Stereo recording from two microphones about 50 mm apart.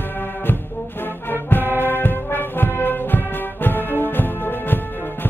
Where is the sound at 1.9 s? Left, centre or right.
Left.